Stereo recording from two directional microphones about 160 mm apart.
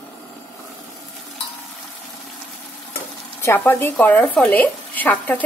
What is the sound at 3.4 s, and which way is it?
Speech, 15° left (ahead or behind).